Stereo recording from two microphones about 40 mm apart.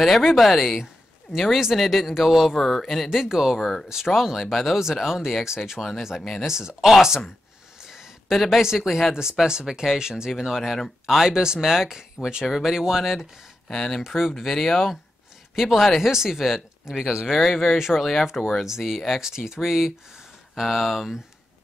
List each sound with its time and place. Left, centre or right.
0.0 s speech: centre
2.5 s speech: centre
3.1 s speech: centre
7.8 s a sound: centre
8.5 s speech: centre
11.3 s speech: centre
12.4 s speech: centre
13.7 s speech: centre
14.0 s speech: centre
17.4 s speech: centre
18.4 s speech: centre
18.7 s speech: centre